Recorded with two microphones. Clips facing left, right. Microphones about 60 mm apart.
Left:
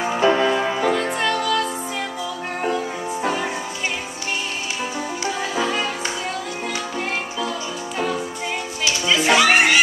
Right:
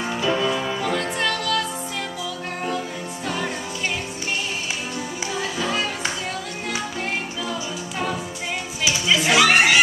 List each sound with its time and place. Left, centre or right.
0.2 s music: left
0.8 s music: centre
5.4 s music: centre
9.0 s music: centre